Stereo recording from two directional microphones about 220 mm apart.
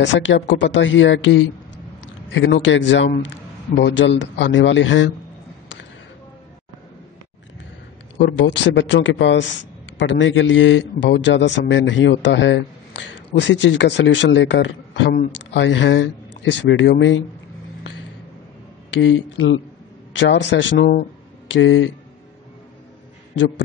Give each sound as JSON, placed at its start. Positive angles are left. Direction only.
{"t": 0.0, "sound": "speech", "side_deg": 55}
{"t": 8.2, "sound": "speech", "side_deg": 50}
{"t": 18.9, "sound": "speech", "side_deg": 60}
{"t": 21.5, "sound": "speech", "side_deg": 60}